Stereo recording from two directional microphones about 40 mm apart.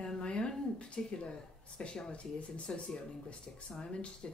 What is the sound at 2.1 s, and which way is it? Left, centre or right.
Speech, left.